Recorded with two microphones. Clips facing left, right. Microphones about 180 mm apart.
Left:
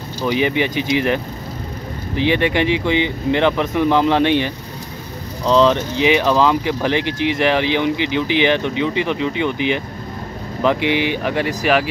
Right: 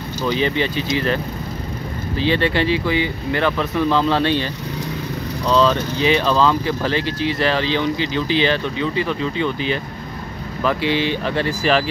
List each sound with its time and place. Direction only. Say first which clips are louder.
0.2 s speech: left 2 dB; 15° left (ahead or behind)